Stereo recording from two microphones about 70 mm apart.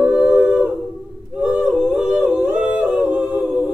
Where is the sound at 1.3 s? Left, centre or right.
Centre.